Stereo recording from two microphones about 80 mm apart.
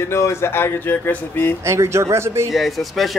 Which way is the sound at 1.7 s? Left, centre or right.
Right.